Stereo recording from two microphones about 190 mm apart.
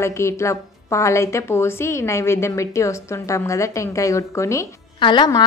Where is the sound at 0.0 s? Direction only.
15° left (ahead or behind).